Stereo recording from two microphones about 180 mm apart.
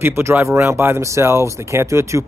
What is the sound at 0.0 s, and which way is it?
Speech, 15° right (ahead or behind).